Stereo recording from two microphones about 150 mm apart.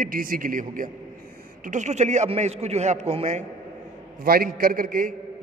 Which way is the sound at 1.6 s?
55° right (ahead or behind).